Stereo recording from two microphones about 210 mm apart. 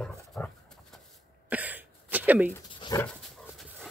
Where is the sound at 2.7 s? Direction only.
20° left (ahead or behind).